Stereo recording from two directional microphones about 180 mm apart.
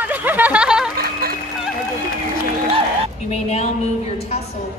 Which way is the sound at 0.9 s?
55° right (ahead or behind).